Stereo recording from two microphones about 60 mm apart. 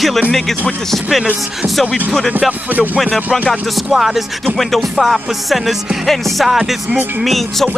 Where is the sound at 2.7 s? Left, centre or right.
Right.